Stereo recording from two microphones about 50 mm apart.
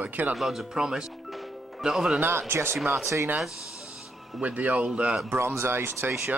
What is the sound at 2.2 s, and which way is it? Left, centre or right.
Speech, right.